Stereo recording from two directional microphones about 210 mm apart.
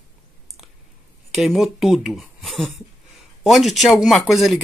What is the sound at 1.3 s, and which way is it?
Speech, centre (ahead or behind).